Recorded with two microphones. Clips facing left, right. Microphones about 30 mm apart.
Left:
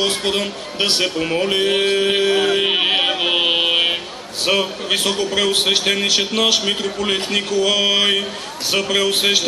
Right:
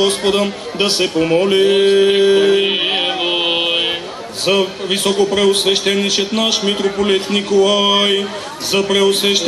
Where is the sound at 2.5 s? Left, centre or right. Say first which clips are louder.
Right 2 dB; centre.